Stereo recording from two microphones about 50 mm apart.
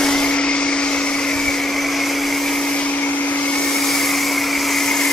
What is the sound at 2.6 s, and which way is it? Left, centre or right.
Vehicle, left.